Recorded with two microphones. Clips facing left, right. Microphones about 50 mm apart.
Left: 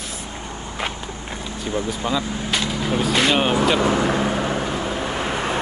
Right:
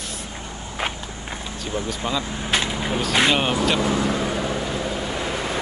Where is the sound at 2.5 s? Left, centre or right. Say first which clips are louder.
Right 1 dB; centre.